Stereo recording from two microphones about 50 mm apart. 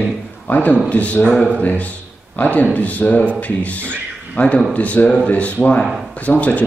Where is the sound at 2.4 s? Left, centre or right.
Left.